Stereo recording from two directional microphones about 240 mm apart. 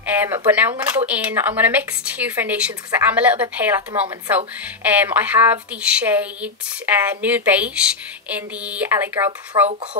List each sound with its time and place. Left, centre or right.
0.0 s speech: centre